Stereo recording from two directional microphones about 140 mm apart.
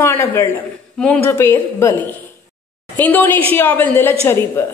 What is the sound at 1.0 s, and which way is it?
Speech, 5° left (ahead or behind).